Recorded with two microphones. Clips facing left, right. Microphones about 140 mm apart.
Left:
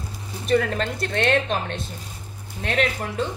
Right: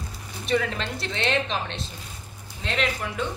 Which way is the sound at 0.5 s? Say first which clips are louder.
Left 4 dB; 45° left (ahead or behind).